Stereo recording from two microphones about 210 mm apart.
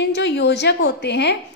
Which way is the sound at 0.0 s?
55° left (ahead or behind).